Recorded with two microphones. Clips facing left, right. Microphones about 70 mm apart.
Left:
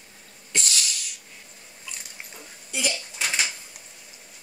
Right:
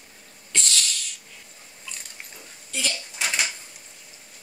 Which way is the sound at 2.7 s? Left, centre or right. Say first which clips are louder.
Left 1 dB; centre.